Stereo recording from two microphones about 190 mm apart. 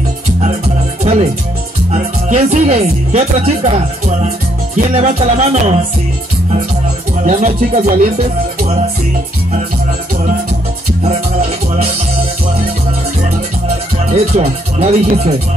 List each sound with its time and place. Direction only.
1.0 s music: 30° right (ahead or behind)
1.9 s speech: 35° right (ahead or behind)
7.2 s speech: 35° right (ahead or behind)
14.1 s speech: 35° right (ahead or behind)